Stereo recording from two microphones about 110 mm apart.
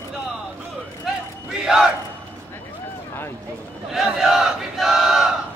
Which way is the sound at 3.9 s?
5° right (ahead or behind).